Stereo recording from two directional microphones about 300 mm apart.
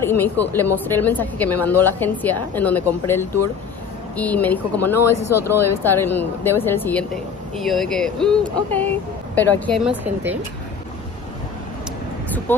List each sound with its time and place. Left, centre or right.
0.1 s a woman's voice: centre
5.2 s speech: left
5.8 s a woman's voice: centre
12.5 s a woman's voice: centre